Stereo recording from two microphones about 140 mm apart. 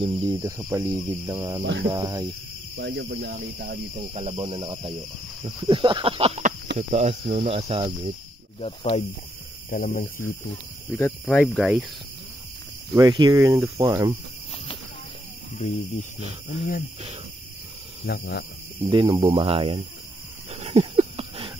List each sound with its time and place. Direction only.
0.0 s speech: 25° right (ahead or behind)
3.1 s speech: 90° right
4.1 s speech: 50° right (ahead or behind)
6.4 s speech: 55° right (ahead or behind)
8.5 s speech: 50° left (ahead or behind)
9.7 s speech: 75° left (ahead or behind)
11.0 s speech: 15° left (ahead or behind)
12.9 s speech: 30° right (ahead or behind)
15.5 s speech: 65° left (ahead or behind)
18.9 s speech: 35° right (ahead or behind)
20.5 s a sound: 45° right (ahead or behind)